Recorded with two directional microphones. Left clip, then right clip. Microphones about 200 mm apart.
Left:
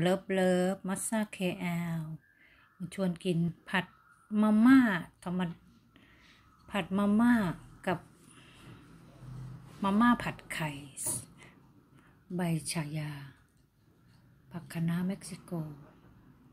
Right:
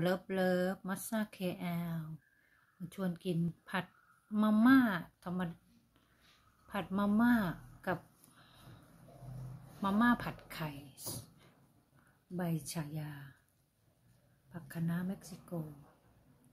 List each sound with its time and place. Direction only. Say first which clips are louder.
0.0 s speech: left 5 dB; 5° left (ahead or behind)
6.7 s speech: left 4 dB; centre (ahead or behind)
9.8 s speech: left 4 dB; centre (ahead or behind)
11.0 s speech: left 6 dB; 25° left (ahead or behind)
12.4 s speech: left 5 dB; 5° left (ahead or behind)
14.5 s speech: left 4 dB; 5° left (ahead or behind)